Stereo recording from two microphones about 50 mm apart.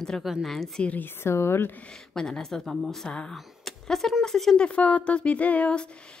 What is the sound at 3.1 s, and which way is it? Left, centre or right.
Speech, centre.